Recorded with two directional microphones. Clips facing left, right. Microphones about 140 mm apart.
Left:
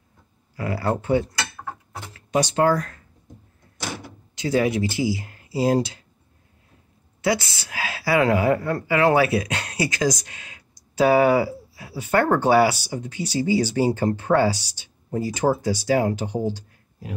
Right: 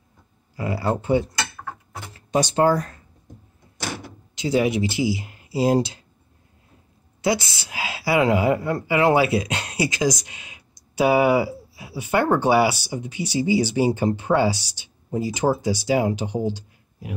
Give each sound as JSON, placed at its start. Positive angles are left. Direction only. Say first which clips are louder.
{"t": 0.6, "sound": "a woman's voice", "louder": "even", "side_deg": -20}
{"t": 2.3, "sound": "a woman's voice", "louder": "right 1 dB", "side_deg": -30}
{"t": 4.4, "sound": "speech", "louder": "right 1 dB", "side_deg": -15}
{"t": 7.2, "sound": "a woman's voice", "louder": "even", "side_deg": -20}